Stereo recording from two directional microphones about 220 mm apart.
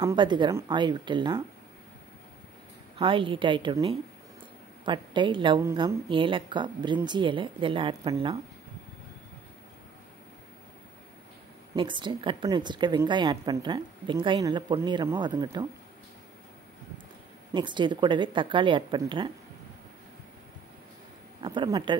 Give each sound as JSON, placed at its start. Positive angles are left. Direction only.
{"t": 0.0, "sound": "a woman's voice", "side_deg": -20}
{"t": 3.0, "sound": "a woman's voice", "side_deg": -25}
{"t": 11.7, "sound": "a woman's voice", "side_deg": -20}
{"t": 17.5, "sound": "a woman's voice", "side_deg": -20}
{"t": 21.4, "sound": "a woman's voice", "side_deg": -20}